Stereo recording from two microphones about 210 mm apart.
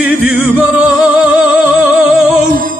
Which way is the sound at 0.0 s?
5° right (ahead or behind).